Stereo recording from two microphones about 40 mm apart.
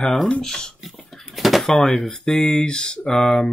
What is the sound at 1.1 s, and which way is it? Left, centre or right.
Bird, centre.